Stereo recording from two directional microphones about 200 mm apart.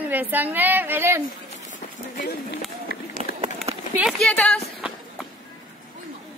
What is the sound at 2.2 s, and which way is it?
Speech, 50° left (ahead or behind).